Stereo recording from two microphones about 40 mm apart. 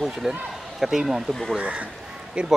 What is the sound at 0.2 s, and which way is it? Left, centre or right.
Speech, centre.